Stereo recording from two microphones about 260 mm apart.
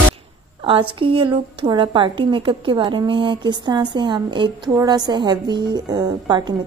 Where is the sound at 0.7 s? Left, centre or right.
Centre.